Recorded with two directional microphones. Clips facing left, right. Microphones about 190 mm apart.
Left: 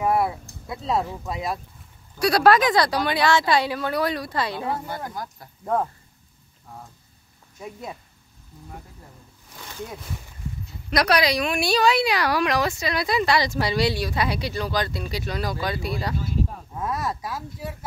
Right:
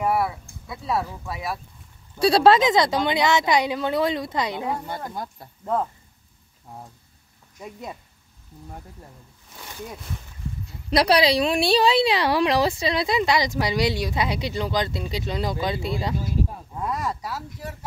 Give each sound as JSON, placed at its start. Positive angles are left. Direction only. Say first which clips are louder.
{"t": 0.7, "sound": "speech", "louder": "left 1 dB", "side_deg": 20}
{"t": 2.1, "sound": "a woman's voice", "louder": "right 2 dB", "side_deg": -30}
{"t": 7.6, "sound": "speech", "louder": "left 1 dB", "side_deg": 5}
{"t": 10.9, "sound": "a woman's voice", "louder": "right 2 dB", "side_deg": -30}
{"t": 16.9, "sound": "speech", "louder": "even", "side_deg": 10}